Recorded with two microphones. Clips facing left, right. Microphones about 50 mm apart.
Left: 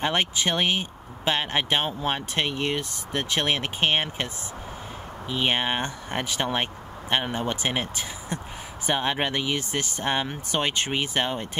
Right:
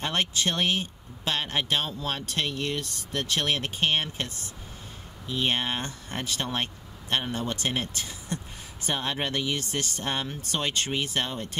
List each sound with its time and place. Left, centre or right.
0.0 s speech: left
5.3 s speech: left